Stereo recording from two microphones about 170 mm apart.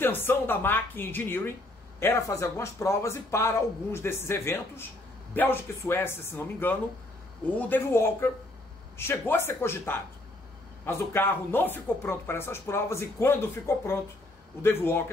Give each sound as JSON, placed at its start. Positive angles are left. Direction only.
{"t": 0.0, "sound": "speech", "side_deg": 10}